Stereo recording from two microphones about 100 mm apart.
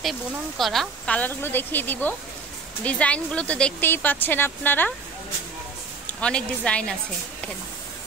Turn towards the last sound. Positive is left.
turn(degrees=10)  # may be behind; listen again after turning